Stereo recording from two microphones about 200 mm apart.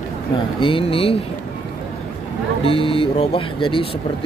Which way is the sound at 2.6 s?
30° left (ahead or behind).